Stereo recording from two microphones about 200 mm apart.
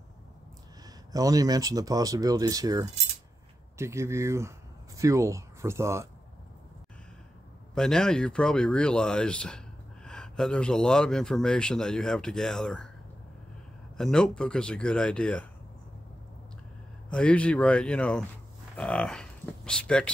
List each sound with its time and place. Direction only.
0.8 s speech: 15° right (ahead or behind)
7.7 s speech: 5° left (ahead or behind)
13.9 s speech: 5° left (ahead or behind)
17.1 s speech: 5° left (ahead or behind)